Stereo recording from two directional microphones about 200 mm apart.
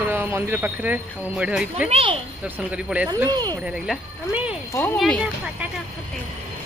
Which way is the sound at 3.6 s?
5° right (ahead or behind).